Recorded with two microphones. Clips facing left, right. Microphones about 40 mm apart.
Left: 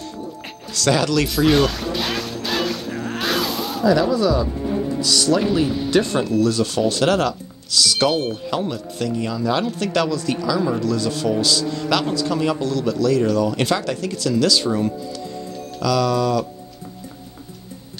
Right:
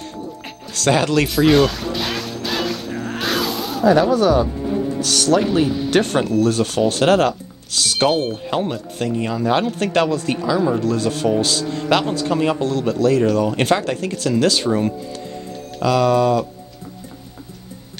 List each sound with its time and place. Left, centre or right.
0.7 s speech: right
1.3 s music: centre
3.8 s speech: right
10.8 s speech: right